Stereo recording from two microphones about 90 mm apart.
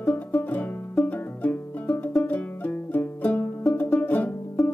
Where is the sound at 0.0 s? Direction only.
20° left (ahead or behind).